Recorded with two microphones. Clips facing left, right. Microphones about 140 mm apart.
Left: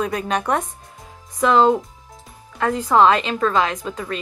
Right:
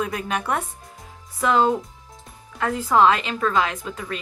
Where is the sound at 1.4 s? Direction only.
20° left (ahead or behind).